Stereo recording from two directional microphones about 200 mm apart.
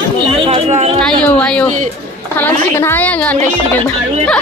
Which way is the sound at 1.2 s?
5° left (ahead or behind).